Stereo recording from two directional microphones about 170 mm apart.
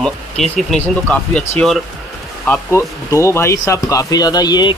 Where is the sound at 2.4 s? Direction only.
10° left (ahead or behind).